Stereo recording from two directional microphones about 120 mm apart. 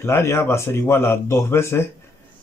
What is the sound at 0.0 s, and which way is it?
A man's voice, 20° left (ahead or behind).